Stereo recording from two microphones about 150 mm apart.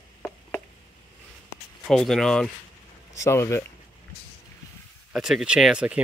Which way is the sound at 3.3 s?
20° left (ahead or behind).